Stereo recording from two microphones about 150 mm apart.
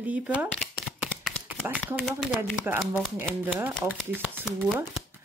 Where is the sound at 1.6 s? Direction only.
10° right (ahead or behind).